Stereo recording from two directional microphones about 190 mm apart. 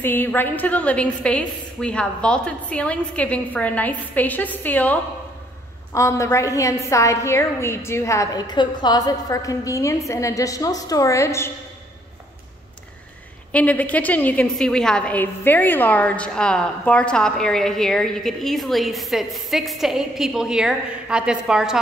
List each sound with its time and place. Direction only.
0.0 s a woman's voice: 10° left (ahead or behind)
5.9 s a woman's voice: 15° left (ahead or behind)
13.5 s a woman's voice: 5° left (ahead or behind)